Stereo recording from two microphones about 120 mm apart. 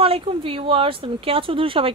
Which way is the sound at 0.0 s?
50° right (ahead or behind).